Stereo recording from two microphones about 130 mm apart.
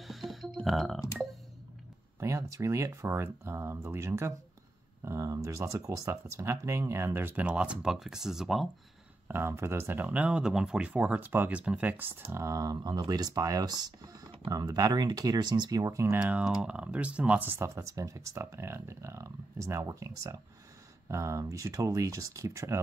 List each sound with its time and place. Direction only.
0.0 s music: centre (ahead or behind)
2.1 s speech: 25° right (ahead or behind); by 8.6 s centre (ahead or behind)
9.3 s speech: 20° right (ahead or behind)
16.2 s speech: 10° right (ahead or behind)